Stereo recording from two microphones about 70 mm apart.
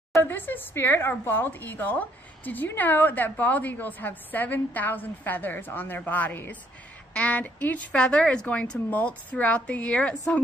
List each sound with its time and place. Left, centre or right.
0.2 s a woman's voice: left